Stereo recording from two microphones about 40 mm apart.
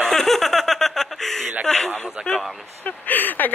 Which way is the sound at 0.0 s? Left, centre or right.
Centre.